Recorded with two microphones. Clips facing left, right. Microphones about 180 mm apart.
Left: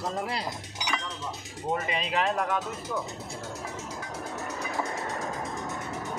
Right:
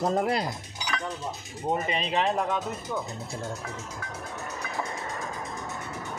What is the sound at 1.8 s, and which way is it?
Speech, 30° right (ahead or behind).